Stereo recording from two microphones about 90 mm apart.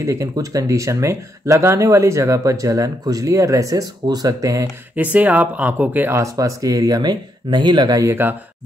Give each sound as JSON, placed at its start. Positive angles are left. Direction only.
{"t": 0.0, "sound": "speech", "side_deg": -35}
{"t": 4.9, "sound": "speech", "side_deg": -15}
{"t": 6.3, "sound": "speech", "side_deg": -40}
{"t": 8.0, "sound": "speech", "side_deg": -25}